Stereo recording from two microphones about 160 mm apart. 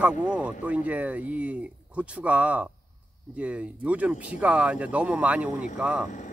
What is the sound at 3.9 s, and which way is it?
Speech, 10° right (ahead or behind).